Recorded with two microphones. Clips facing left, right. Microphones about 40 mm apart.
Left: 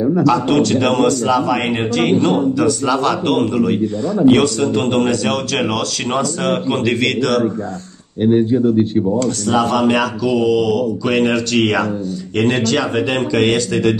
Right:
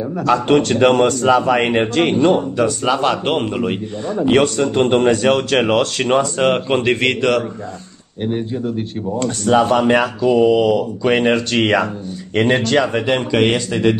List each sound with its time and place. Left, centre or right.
0.2 s a man's voice: right
8.2 s speech: centre
9.2 s speech: right
13.3 s speech: right